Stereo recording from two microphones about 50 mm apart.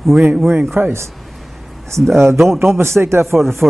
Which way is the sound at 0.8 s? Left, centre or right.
Right.